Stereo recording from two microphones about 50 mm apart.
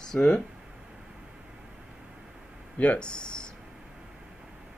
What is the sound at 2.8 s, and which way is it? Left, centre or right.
Speech, left.